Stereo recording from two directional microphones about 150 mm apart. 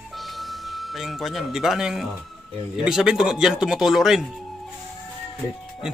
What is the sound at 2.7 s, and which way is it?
Speech, 5° right (ahead or behind).